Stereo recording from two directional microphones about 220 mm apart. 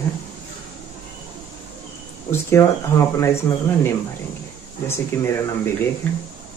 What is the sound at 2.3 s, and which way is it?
Speech, 10° left (ahead or behind).